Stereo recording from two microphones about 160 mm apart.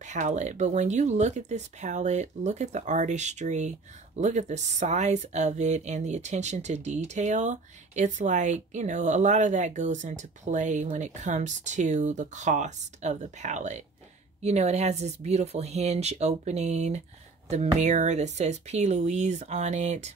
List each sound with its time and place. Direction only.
0.0 s speech: 50° right (ahead or behind)